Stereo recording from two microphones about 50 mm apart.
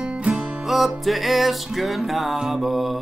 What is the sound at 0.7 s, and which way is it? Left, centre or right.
Music, centre.